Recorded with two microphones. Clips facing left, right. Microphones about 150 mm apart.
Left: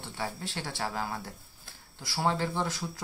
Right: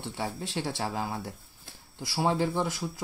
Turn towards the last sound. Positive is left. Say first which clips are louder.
# right 2 dB
turn(degrees=-10)  # may be behind; listen again after turning